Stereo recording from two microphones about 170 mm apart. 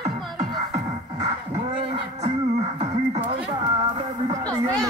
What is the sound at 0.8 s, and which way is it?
Music, 35° right (ahead or behind).